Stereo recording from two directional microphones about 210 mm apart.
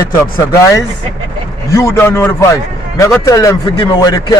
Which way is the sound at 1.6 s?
15° left (ahead or behind).